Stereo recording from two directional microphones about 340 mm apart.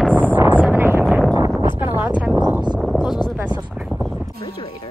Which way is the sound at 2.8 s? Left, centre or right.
Centre.